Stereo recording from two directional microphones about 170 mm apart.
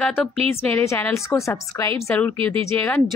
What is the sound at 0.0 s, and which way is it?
A woman's voice, 10° left (ahead or behind).